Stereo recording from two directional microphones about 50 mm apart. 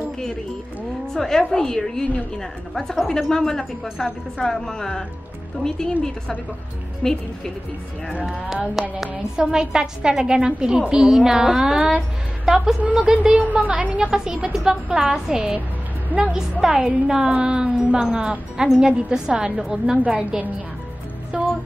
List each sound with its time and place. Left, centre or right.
1.1 s a woman's voice: centre
7.0 s speech: centre
8.8 s a woman's voice: centre
9.4 s a woman's voice: centre
12.8 s a woman's voice: right
14.0 s a woman's voice: centre
16.1 s a woman's voice: right
16.6 s a woman's voice: centre
21.3 s music: centre